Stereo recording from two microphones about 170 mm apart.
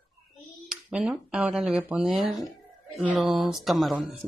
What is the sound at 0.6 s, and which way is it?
Speech, 5° right (ahead or behind).